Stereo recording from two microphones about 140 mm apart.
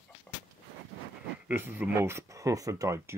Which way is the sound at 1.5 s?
15° right (ahead or behind).